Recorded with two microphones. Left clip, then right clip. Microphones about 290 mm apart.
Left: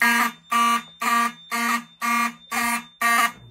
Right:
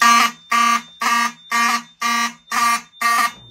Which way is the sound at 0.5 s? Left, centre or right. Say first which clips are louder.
Right 4 dB; right.